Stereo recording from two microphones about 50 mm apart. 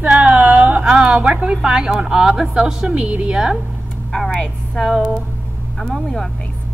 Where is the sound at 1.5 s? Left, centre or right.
Centre.